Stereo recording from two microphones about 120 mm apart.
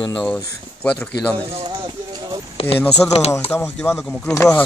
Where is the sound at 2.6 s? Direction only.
55° left (ahead or behind).